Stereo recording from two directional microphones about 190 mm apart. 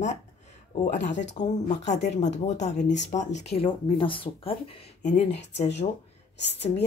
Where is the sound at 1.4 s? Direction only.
40° left (ahead or behind).